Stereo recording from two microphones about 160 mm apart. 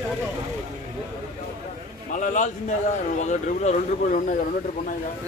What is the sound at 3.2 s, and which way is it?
Speech, 50° left (ahead or behind).